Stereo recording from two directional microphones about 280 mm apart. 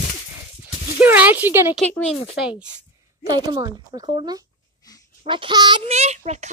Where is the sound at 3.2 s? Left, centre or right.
Centre.